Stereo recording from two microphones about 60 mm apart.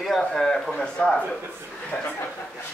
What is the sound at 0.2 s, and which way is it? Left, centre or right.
A man's voice, centre.